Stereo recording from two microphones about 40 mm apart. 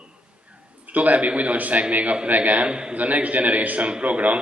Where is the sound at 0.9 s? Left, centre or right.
Right.